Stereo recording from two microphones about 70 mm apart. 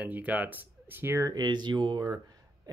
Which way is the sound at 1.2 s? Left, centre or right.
Right.